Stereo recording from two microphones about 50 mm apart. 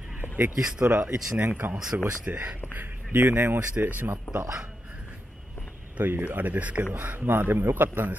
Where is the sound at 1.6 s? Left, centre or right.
Right.